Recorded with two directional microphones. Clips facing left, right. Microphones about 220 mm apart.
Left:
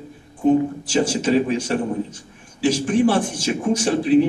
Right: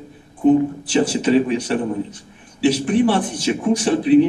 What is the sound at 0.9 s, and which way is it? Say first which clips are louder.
A man's voice: right 3 dB; 45° left (ahead or behind).